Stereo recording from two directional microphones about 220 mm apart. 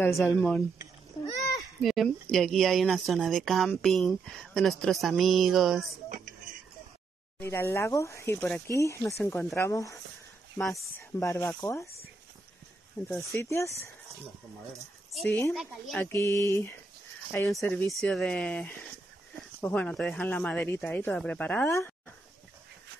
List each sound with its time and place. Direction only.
0.0 s a woman's voice: 5° left (ahead or behind)
1.8 s a woman's voice: centre (ahead or behind)
6.0 s a sound: 35° right (ahead or behind)
7.3 s speech: 10° left (ahead or behind)
11.1 s speech: 15° left (ahead or behind)
13.1 s speech: 10° left (ahead or behind)
15.1 s a woman's voice: 5° left (ahead or behind)